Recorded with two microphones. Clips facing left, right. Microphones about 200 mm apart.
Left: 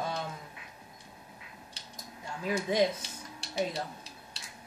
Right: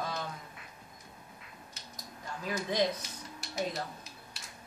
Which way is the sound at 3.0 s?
30° left (ahead or behind).